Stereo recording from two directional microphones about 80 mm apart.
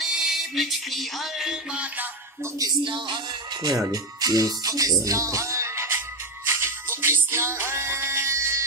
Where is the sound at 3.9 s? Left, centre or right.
Right.